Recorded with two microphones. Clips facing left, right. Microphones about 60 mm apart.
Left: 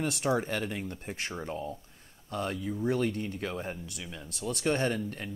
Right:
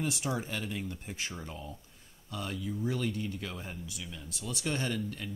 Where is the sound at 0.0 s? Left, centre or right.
Left.